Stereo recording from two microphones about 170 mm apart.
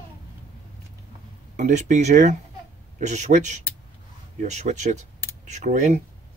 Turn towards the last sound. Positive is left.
turn(degrees=-45)  # may be behind; listen again after turning